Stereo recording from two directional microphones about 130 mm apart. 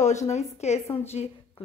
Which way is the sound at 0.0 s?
65° left (ahead or behind).